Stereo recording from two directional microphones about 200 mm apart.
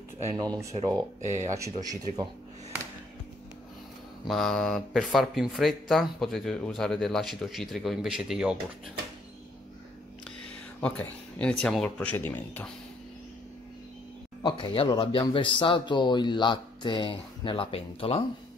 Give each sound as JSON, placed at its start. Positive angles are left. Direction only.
{"t": 0.3, "sound": "speech", "side_deg": -20}
{"t": 1.2, "sound": "speech", "side_deg": -35}
{"t": 1.5, "sound": "speech", "side_deg": -15}
{"t": 4.2, "sound": "speech", "side_deg": 0}
{"t": 10.8, "sound": "speech", "side_deg": 5}
{"t": 14.4, "sound": "speech", "side_deg": 25}